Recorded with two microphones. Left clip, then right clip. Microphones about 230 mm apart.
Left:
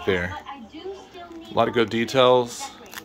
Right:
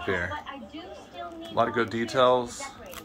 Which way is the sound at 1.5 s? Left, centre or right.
Left.